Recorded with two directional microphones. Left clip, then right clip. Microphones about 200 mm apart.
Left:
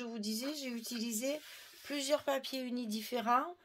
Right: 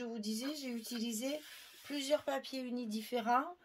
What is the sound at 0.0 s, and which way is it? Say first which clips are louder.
A woman's voice: left 1 dB; 35° left (ahead or behind).